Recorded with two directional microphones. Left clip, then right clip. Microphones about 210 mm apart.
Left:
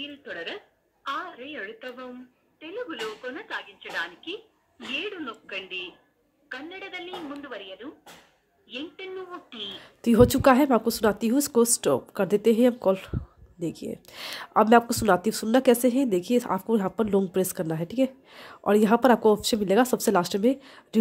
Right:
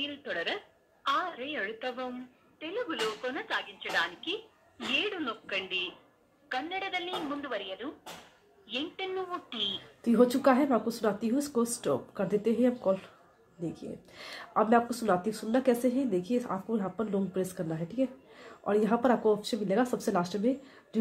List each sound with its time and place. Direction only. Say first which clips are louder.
0.0 s speech: right 2 dB; 5° right (ahead or behind)
1.0 s a sound: right 2 dB; 5° right (ahead or behind)
2.6 s speech: right 1 dB; 5° right (ahead or behind)
10.0 s speech: left 6 dB; 45° left (ahead or behind)